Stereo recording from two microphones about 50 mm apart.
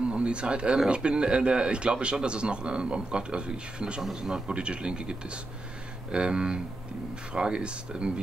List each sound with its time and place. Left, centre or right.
0.1 s a man's voice: right